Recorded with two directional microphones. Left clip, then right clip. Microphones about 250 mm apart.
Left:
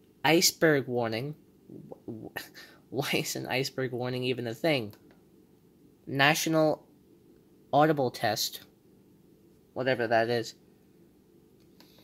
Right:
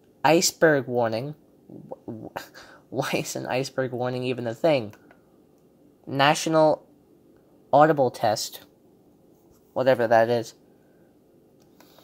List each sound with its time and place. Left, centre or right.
0.2 s speech: centre
6.0 s speech: centre
9.8 s speech: centre